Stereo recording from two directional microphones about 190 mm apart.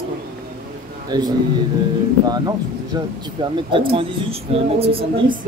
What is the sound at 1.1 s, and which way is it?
Speech, 20° right (ahead or behind).